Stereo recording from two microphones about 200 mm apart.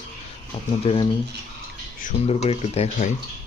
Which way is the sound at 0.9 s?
30° left (ahead or behind).